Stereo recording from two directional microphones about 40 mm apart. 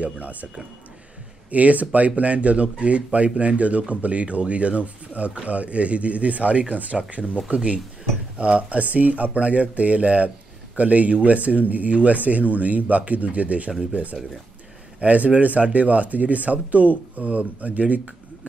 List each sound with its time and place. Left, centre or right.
0.0 s speech: right
1.5 s speech: right
15.0 s speech: right